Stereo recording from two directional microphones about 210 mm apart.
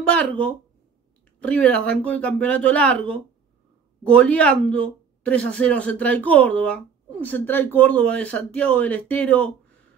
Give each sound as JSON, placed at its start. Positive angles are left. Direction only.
{"t": 0.1, "sound": "speech", "side_deg": 5}